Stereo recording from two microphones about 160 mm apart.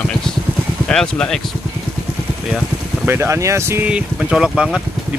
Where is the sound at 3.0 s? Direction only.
15° right (ahead or behind).